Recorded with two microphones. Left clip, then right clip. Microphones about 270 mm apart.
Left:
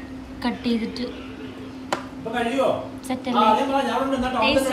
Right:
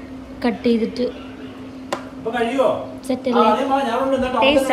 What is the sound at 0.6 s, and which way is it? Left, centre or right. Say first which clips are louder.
Speech: right 10 dB; centre.